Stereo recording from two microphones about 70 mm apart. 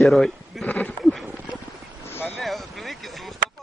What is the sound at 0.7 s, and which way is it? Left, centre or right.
Speech, left.